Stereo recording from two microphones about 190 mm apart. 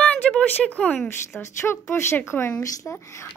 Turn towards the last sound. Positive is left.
turn(degrees=15)  # may be behind; listen again after turning